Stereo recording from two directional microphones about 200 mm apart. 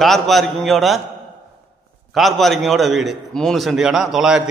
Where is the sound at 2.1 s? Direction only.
Centre (ahead or behind).